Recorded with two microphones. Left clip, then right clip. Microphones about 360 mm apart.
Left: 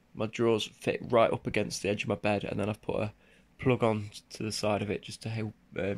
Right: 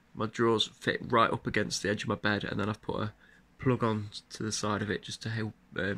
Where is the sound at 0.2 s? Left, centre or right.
Centre.